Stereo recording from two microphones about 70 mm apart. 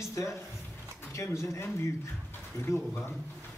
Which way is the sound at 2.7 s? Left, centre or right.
Left.